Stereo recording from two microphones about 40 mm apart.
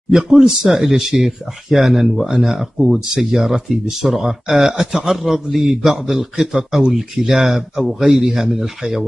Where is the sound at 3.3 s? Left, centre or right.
Centre.